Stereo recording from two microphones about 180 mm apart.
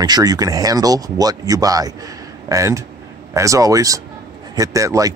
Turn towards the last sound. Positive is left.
turn(degrees=-20)  # may be behind; listen again after turning